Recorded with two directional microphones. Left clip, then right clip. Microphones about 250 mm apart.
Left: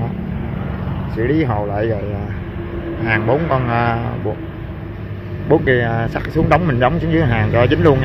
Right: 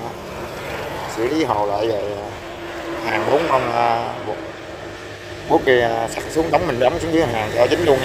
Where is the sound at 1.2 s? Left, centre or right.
Centre.